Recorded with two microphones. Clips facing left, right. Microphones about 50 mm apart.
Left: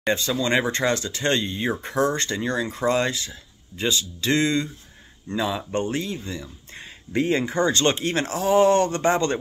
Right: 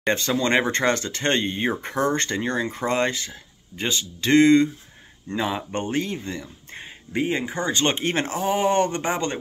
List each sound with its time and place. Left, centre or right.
0.1 s speech: right
7.1 s speech: centre
7.9 s speech: right; by 9.4 s centre